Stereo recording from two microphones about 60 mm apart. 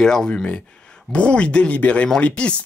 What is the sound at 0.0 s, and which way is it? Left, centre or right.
Speech, centre.